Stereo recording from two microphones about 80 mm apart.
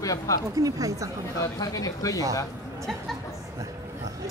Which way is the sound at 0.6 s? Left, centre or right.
Right.